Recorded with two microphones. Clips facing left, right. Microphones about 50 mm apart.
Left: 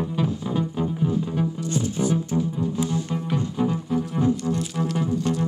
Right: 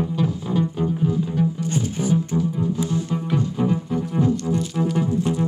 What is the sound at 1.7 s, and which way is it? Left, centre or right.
Music, right.